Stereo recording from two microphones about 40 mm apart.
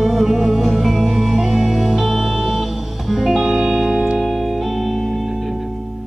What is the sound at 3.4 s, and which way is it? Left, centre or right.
Music, centre.